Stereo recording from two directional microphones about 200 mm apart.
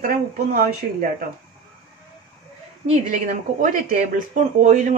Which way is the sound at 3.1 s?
40° right (ahead or behind).